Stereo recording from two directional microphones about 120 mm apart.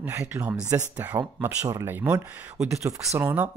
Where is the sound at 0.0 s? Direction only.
15° right (ahead or behind).